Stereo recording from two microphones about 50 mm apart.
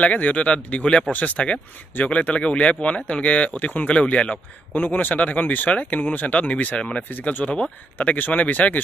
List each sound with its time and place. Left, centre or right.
0.0 s speech: left
4.7 s speech: left